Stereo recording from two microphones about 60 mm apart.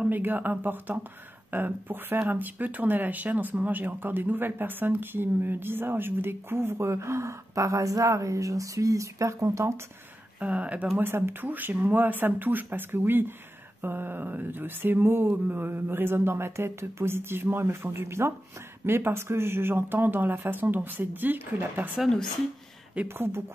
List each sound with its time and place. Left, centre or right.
0.1 s speech: right
10.4 s speech: right
11.0 s speech: right
11.4 s speech: right
23.0 s speech: right